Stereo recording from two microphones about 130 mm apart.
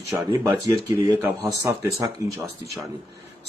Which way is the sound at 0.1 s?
25° right (ahead or behind).